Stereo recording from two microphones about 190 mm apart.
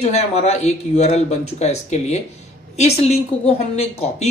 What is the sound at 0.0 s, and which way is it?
Speech, 35° left (ahead or behind).